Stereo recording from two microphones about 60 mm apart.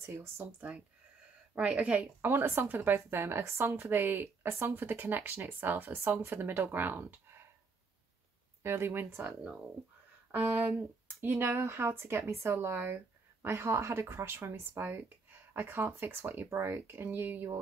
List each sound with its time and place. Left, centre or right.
0.0 s speech: right
1.8 s speech: right
2.2 s speech: right
8.6 s speech: right
9.2 s speech: centre
10.3 s speech: right
12.6 s speech: right